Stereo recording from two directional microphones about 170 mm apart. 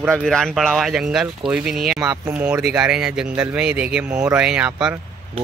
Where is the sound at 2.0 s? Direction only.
20° right (ahead or behind).